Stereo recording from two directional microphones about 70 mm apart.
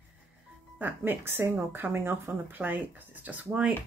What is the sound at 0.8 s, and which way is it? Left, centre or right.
Speech, right.